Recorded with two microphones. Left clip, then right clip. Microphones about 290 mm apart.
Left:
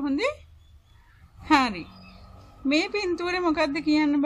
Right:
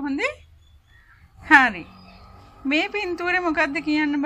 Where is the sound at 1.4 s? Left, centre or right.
Centre.